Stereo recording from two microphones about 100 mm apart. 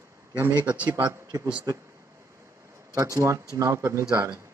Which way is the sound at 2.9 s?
35° right (ahead or behind).